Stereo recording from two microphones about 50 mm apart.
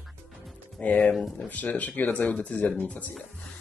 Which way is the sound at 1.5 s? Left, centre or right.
Left.